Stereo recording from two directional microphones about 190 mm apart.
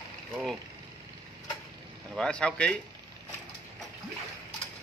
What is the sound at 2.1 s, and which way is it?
Speech, 5° left (ahead or behind).